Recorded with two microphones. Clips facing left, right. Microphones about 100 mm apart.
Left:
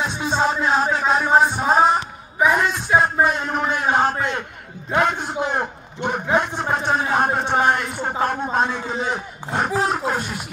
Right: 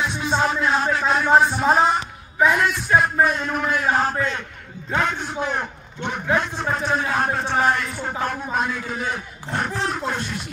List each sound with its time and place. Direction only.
0.0 s music: 25° left (ahead or behind)
0.5 s a sound: 30° left (ahead or behind)
0.9 s a man's voice: 20° left (ahead or behind)
10.0 s music: 10° left (ahead or behind)